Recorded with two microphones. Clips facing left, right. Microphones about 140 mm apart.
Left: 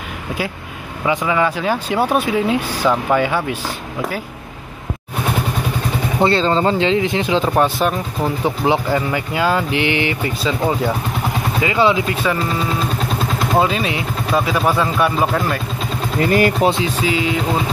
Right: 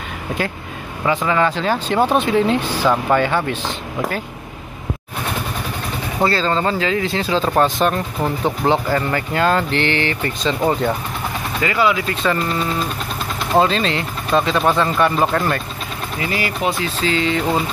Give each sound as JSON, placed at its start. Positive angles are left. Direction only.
{"t": 1.0, "sound": "speech", "side_deg": 10}
{"t": 6.2, "sound": "speech", "side_deg": 25}
{"t": 10.6, "sound": "speech", "side_deg": 0}
{"t": 11.6, "sound": "speech", "side_deg": 25}
{"t": 12.1, "sound": "speech", "side_deg": 10}
{"t": 13.6, "sound": "speech", "side_deg": 10}
{"t": 16.2, "sound": "speech", "side_deg": 45}
{"t": 16.8, "sound": "speech", "side_deg": 10}